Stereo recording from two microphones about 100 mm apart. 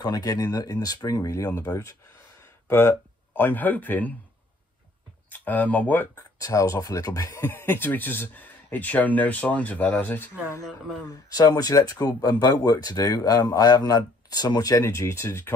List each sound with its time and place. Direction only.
0.0 s a man's voice: 40° left (ahead or behind); by 4.1 s 15° left (ahead or behind)
5.3 s speech: 15° left (ahead or behind)
6.1 s a man's voice: 35° left (ahead or behind)
7.4 s speech: 20° left (ahead or behind)
11.3 s a man's voice: 40° left (ahead or behind)